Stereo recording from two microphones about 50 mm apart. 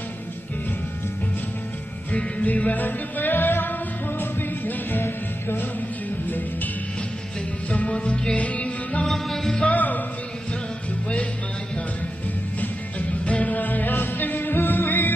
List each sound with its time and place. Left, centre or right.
2.1 s music: left
7.7 s music: left
9.0 s music: centre
9.6 s music: left
12.5 s music: left